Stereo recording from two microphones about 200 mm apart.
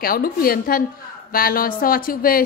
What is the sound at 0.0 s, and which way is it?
A woman's voice, 45° left (ahead or behind).